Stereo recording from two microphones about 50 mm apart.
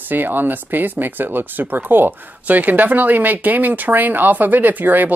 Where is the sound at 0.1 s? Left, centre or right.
Right.